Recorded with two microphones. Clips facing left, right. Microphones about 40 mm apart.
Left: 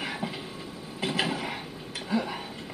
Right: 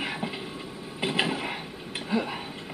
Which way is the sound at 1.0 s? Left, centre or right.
Centre.